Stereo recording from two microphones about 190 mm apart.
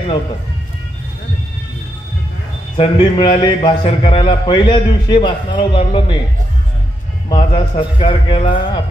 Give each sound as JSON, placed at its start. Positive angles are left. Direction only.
{"t": 2.8, "sound": "a man's voice", "side_deg": 25}
{"t": 7.2, "sound": "a man's voice", "side_deg": 30}